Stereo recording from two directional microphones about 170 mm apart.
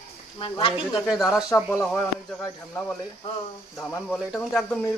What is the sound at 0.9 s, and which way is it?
Speech, centre (ahead or behind).